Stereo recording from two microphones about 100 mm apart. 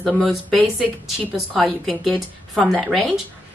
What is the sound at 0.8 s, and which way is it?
A woman's voice, centre (ahead or behind).